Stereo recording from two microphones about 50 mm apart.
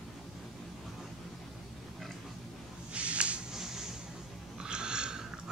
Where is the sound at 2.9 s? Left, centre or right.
Right.